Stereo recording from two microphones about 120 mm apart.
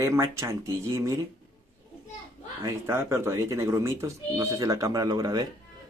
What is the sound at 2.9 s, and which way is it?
Speech, 20° right (ahead or behind).